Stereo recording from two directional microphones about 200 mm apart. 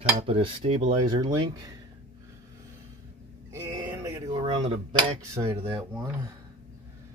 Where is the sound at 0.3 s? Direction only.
30° right (ahead or behind).